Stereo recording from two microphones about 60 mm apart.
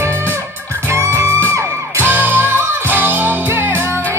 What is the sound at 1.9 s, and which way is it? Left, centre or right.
Music, right.